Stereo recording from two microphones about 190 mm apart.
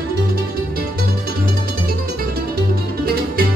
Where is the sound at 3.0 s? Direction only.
55° right (ahead or behind).